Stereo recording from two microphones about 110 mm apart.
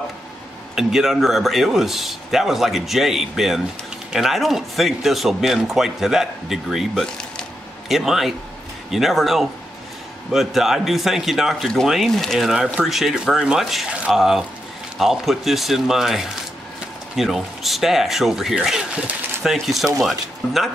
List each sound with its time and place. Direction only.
0.7 s speech: 5° right (ahead or behind)